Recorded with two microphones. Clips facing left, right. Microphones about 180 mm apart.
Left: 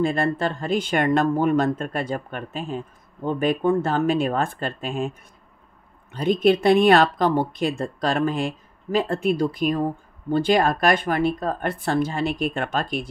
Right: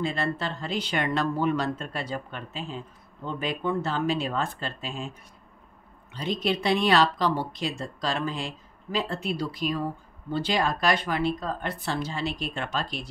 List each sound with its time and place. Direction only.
0.0 s speech: 50° left (ahead or behind)
6.1 s speech: 55° left (ahead or behind)